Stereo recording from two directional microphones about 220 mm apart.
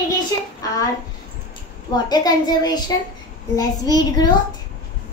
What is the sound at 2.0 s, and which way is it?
A woman's voice, 20° left (ahead or behind).